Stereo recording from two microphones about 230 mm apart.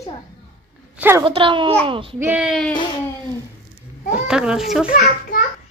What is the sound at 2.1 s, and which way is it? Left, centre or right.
Speech, centre.